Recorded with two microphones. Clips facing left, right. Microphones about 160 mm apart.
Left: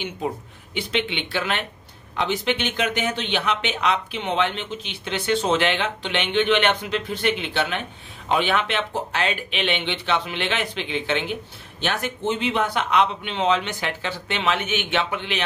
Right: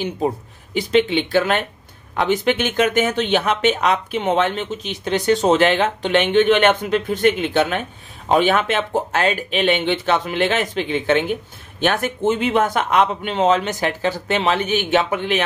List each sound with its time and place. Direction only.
0.7 s speech: 40° right (ahead or behind)